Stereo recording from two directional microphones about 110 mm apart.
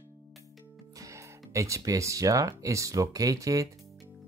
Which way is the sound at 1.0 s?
25° right (ahead or behind).